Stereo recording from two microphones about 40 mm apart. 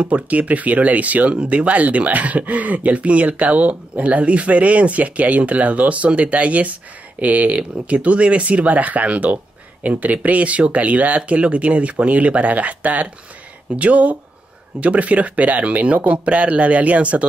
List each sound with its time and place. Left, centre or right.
0.0 s speech: right